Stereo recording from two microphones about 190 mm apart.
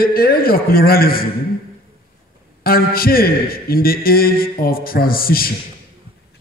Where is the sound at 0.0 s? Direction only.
50° left (ahead or behind).